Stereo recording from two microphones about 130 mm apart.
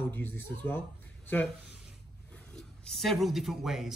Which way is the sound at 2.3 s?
5° left (ahead or behind).